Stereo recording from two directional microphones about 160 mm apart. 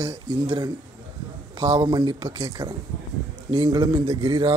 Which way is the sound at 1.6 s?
30° right (ahead or behind).